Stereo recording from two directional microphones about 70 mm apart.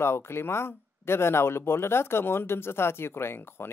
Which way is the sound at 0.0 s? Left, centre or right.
Left.